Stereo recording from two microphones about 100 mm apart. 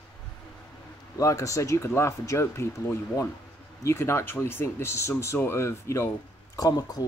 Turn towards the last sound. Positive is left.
turn(degrees=40)  # may be behind; listen again after turning